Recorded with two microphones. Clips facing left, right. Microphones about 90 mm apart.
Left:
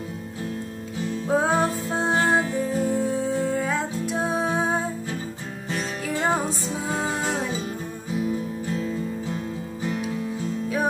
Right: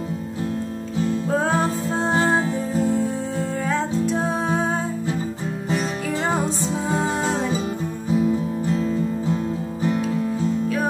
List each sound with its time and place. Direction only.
1.3 s music: 10° left (ahead or behind)
2.1 s music: 15° right (ahead or behind)
3.5 s music: 5° left (ahead or behind)
6.2 s music: 5° right (ahead or behind)